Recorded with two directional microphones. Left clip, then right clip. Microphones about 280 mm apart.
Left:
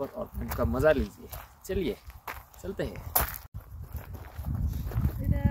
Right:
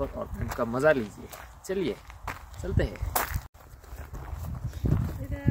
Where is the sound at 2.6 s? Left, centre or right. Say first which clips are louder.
Right 3 dB; centre.